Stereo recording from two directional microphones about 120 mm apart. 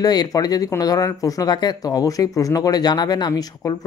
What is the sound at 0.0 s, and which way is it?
Speech, 35° left (ahead or behind).